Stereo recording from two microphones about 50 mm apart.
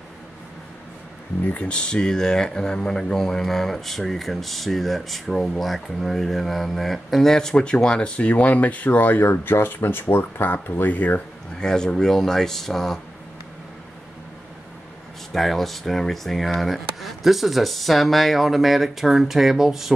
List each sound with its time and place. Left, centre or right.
1.6 s speech: centre
11.6 s speech: centre
15.3 s speech: centre